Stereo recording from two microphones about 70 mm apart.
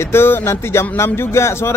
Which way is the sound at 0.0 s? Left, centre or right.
Left.